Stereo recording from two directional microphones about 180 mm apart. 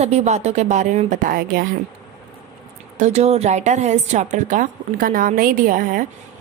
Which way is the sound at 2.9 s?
40° right (ahead or behind).